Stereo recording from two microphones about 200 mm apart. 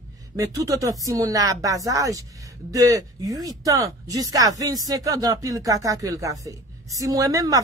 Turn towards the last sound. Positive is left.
turn(degrees=-20)  # may be behind; listen again after turning